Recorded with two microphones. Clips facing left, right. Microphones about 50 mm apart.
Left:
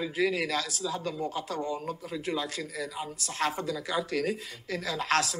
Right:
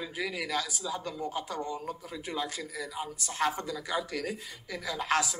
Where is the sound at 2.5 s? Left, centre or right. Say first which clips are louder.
Left 2 dB; left.